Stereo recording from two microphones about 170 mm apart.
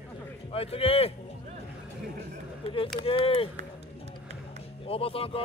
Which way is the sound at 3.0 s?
35° left (ahead or behind).